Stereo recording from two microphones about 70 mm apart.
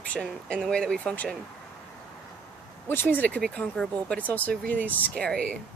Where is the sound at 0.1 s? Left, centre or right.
Centre.